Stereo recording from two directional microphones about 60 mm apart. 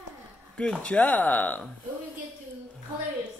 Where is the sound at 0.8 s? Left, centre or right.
Left.